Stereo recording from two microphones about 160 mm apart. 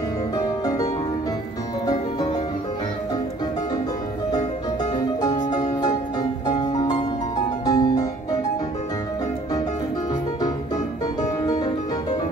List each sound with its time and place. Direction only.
0.4 s music: 20° left (ahead or behind)
4.9 s music: 25° left (ahead or behind)
11.4 s music: 25° left (ahead or behind)